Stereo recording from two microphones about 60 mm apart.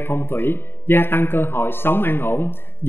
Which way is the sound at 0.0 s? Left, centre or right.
Left.